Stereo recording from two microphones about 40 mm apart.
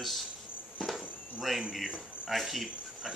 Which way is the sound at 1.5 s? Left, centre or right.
Centre.